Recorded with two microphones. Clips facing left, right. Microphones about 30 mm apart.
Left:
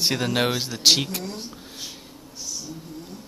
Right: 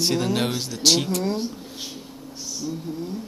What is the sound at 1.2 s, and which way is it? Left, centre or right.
Speech, centre.